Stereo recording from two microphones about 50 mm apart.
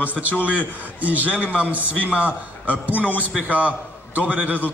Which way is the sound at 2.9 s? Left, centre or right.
Left.